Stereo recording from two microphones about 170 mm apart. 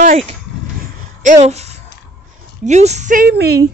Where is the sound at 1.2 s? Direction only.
45° right (ahead or behind).